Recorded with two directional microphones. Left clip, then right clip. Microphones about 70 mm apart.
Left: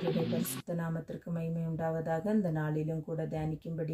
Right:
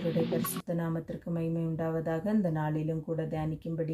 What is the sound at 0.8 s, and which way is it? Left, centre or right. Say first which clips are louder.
Speech: right 4 dB; left.